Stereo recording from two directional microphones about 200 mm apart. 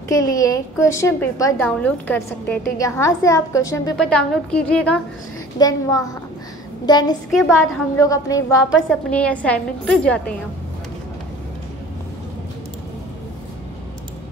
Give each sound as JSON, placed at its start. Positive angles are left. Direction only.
{"t": 0.1, "sound": "a woman's voice", "side_deg": 15}
{"t": 4.0, "sound": "a woman's voice", "side_deg": 5}
{"t": 5.6, "sound": "a woman's voice", "side_deg": 20}
{"t": 7.2, "sound": "a woman's voice", "side_deg": 0}
{"t": 8.0, "sound": "a woman's voice", "side_deg": 15}
{"t": 9.1, "sound": "a woman's voice", "side_deg": 5}